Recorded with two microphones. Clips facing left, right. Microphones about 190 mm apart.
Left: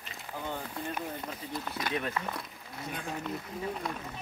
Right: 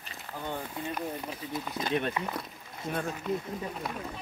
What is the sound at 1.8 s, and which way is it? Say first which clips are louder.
Speech: right 4 dB; 25° right (ahead or behind).